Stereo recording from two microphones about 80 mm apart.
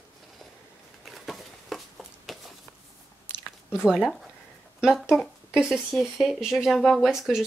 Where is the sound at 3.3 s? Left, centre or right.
Left.